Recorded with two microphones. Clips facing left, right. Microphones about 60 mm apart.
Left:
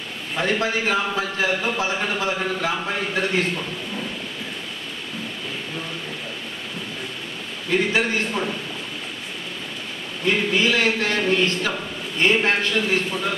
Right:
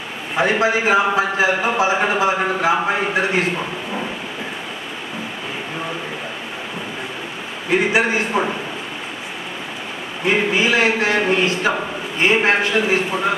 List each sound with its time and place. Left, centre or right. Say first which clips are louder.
0.4 s a man's voice: right 6 dB; centre
7.7 s a man's voice: right 4 dB; right
10.2 s a man's voice: right 3 dB; right